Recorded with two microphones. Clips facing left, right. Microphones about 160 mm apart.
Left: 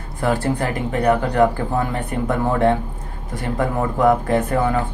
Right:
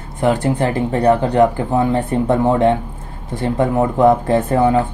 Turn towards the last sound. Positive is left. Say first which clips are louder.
# right 4 dB
turn(degrees=-25)  # may be behind; listen again after turning